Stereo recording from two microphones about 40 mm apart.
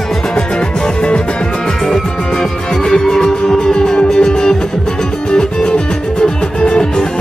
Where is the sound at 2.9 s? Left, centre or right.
Centre.